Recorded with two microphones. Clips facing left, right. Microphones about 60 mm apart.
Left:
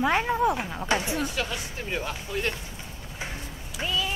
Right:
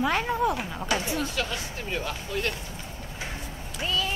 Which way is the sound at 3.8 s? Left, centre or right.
Centre.